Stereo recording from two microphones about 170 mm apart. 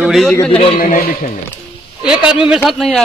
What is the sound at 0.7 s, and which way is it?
Speech, 55° left (ahead or behind).